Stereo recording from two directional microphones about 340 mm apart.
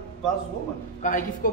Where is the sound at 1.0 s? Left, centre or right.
Left.